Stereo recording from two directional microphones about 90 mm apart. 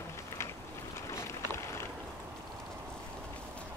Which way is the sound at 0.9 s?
30° left (ahead or behind).